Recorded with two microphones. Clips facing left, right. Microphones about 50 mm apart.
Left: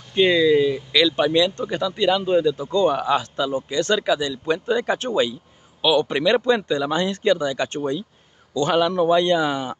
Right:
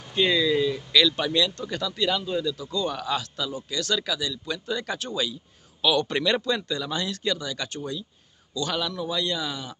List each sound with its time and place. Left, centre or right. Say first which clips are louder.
0.1 s speech: left 6 dB; centre
2.2 s speech: left 9 dB; left
5.8 s speech: left 4 dB; centre
6.4 s speech: left 8 dB; left